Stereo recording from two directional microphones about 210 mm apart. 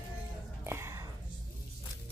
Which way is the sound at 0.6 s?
10° right (ahead or behind).